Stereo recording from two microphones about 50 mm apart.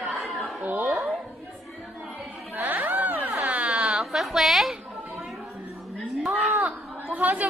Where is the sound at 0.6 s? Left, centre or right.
Right.